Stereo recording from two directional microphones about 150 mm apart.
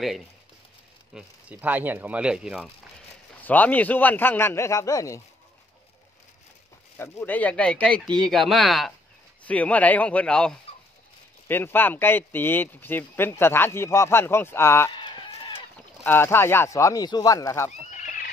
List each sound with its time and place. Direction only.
1.1 s speech: 10° right (ahead or behind)
3.4 s speech: 10° left (ahead or behind)
7.0 s speech: 15° left (ahead or behind)
15.0 s a sound: 30° left (ahead or behind)
16.0 s speech: 15° left (ahead or behind)
17.9 s a sound: 65° left (ahead or behind)